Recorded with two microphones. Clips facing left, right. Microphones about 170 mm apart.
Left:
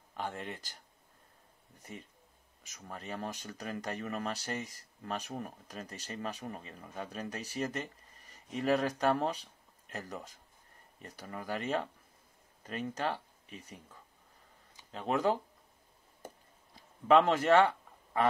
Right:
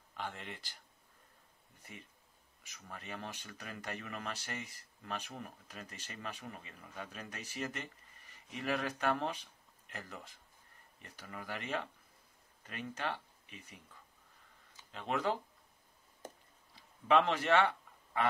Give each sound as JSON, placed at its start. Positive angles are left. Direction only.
{"t": 0.1, "sound": "speech", "side_deg": 40}
{"t": 1.8, "sound": "speech", "side_deg": 40}
{"t": 14.9, "sound": "speech", "side_deg": 40}
{"t": 16.7, "sound": "speech", "side_deg": 45}